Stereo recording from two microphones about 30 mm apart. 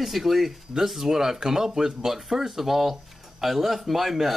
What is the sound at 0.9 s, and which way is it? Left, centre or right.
Speech, centre.